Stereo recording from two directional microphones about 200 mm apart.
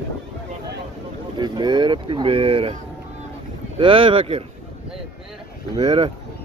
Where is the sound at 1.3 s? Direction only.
20° right (ahead or behind).